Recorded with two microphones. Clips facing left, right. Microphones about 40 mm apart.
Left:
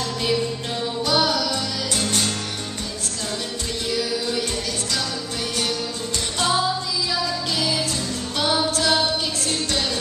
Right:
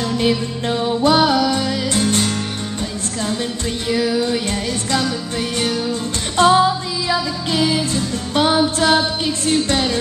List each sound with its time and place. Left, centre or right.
0.2 s music: right
3.9 s music: right
6.3 s music: right